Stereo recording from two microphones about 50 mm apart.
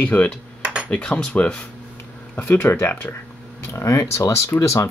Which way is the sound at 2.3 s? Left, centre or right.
Left.